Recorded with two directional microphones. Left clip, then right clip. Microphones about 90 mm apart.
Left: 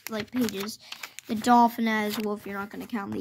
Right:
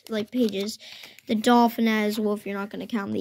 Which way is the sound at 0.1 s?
25° right (ahead or behind).